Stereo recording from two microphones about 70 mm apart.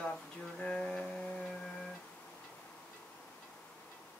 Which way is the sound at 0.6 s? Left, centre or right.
Centre.